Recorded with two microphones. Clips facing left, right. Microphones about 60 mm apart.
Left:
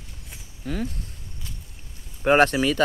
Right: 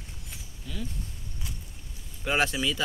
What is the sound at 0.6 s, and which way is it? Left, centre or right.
Speech, left.